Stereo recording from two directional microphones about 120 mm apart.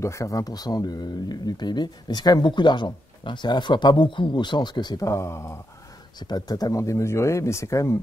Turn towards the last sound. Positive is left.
turn(degrees=25)  # may be behind; listen again after turning